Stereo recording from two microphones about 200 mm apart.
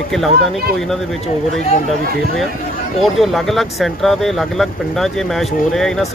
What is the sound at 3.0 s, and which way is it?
Speech, centre (ahead or behind).